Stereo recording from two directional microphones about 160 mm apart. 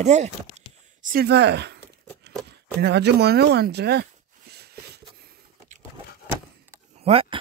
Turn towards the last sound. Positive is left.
turn(degrees=-40)  # may be behind; listen again after turning